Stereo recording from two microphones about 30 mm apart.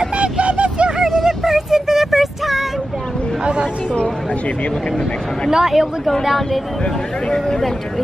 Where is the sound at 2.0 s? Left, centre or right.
Centre.